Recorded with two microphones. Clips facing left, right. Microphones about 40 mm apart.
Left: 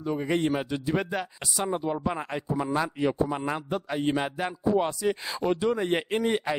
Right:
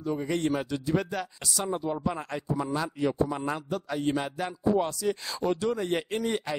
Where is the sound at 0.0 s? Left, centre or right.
Left.